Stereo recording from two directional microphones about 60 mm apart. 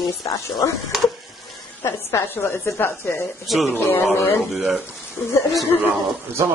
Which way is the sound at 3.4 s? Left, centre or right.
Centre.